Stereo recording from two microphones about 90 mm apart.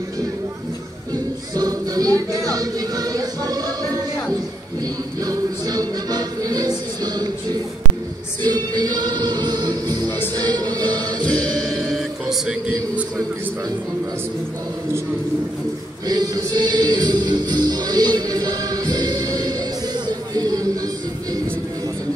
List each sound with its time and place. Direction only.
1.1 s music: 45° right (ahead or behind)
5.2 s music: 45° right (ahead or behind)
8.4 s music: 50° right (ahead or behind)
10.0 s music: 20° left (ahead or behind)
10.3 s music: 45° right (ahead or behind)
11.2 s music: 15° left (ahead or behind)
11.7 s music: 5° right (ahead or behind)
16.1 s music: 50° right (ahead or behind)
20.1 s a sound: 45° right (ahead or behind)